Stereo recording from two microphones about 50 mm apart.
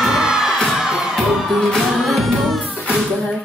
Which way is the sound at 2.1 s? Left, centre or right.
Centre.